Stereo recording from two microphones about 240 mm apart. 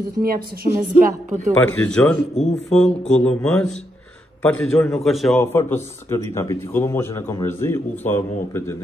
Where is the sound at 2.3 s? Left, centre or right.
Left.